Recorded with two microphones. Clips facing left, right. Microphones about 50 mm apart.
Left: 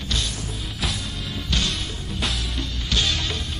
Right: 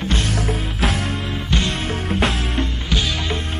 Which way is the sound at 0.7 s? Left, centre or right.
Right.